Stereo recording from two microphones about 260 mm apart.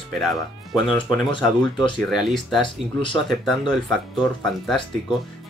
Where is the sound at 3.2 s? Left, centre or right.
Centre.